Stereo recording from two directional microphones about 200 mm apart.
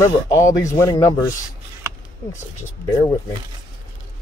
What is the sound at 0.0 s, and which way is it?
Speech, 15° left (ahead or behind).